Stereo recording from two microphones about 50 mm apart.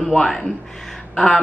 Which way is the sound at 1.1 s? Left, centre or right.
Centre.